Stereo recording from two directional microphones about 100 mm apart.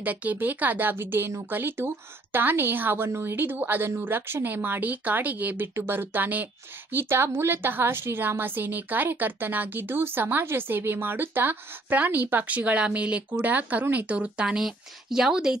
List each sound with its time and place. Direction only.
0.0 s speech: 15° right (ahead or behind)